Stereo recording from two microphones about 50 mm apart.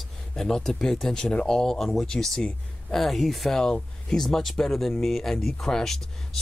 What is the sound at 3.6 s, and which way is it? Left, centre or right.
Speech, centre.